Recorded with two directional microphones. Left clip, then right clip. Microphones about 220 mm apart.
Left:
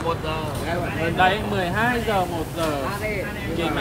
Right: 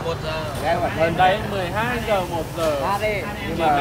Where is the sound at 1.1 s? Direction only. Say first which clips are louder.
Right 2 dB; 30° left (ahead or behind).